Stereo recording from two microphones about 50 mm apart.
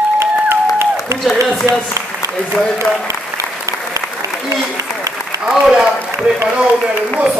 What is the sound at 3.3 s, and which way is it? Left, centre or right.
Applause, right.